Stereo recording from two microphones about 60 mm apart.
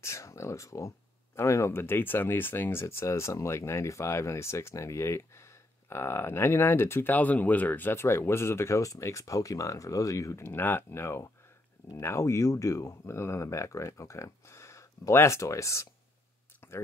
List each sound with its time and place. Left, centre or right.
0.0 s speech: left
7.2 s speech: left
7.9 s speech: left
10.4 s speech: left